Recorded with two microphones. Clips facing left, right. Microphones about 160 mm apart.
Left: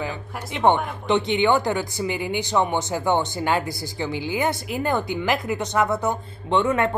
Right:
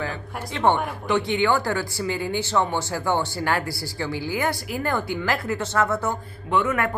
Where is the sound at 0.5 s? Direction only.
20° left (ahead or behind).